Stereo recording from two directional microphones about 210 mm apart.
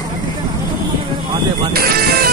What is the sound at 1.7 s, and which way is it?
Music, 45° right (ahead or behind).